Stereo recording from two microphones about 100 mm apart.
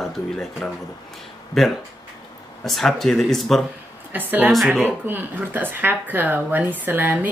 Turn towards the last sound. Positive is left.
turn(degrees=-20)  # may be behind; listen again after turning